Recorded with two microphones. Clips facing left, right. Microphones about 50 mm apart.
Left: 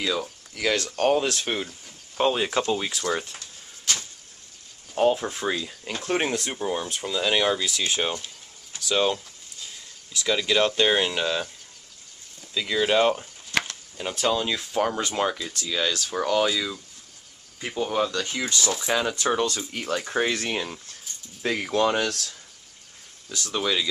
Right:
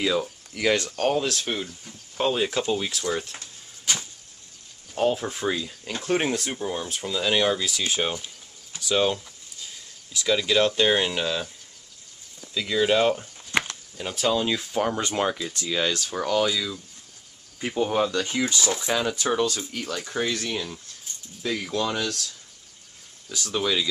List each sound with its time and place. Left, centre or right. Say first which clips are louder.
0.0 s speech: right 3 dB; centre
0.8 s speech: left 2 dB; centre
3.9 s a sound: even; centre
4.9 s speech: left 2 dB; centre
12.5 s speech: even; centre
13.5 s a sound: right 1 dB; right
14.1 s speech: right 1 dB; centre
16.1 s speech: left 3 dB; centre
17.6 s speech: right 2 dB; centre
18.8 s speech: even; centre; by 22.3 s left
23.3 s speech: right 1 dB; centre